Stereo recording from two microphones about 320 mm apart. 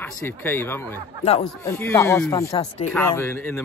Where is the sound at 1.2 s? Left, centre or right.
Centre.